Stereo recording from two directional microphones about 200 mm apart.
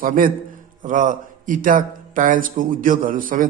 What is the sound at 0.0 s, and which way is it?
A man's voice, 45° right (ahead or behind).